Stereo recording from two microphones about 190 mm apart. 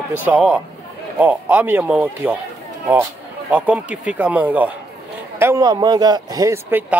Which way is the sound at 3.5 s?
10° right (ahead or behind).